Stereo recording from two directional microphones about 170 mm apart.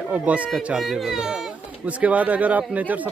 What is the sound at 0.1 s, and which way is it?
Speech, 10° right (ahead or behind).